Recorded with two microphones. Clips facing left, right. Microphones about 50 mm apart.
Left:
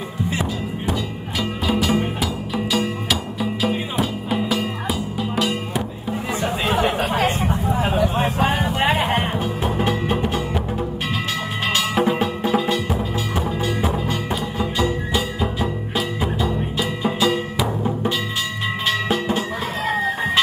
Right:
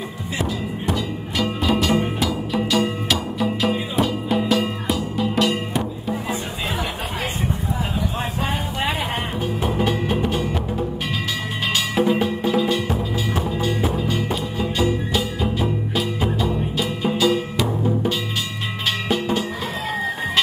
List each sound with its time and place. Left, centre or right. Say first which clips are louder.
1.4 s music: right 1 dB; centre
6.7 s chatter: left 9 dB; left
8.2 s music: left 5 dB; left
11.7 s music: even; left
14.6 s music: right 1 dB; left
16.7 s music: even; left